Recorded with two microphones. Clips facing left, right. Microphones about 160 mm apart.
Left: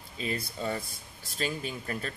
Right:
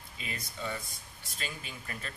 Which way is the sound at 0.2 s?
35° left (ahead or behind).